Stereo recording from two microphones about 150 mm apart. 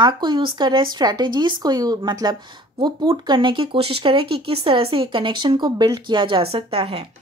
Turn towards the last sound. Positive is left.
turn(degrees=-40)  # may be behind; listen again after turning